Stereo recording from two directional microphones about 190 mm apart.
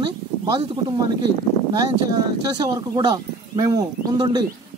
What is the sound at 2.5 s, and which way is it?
Speech, 20° right (ahead or behind).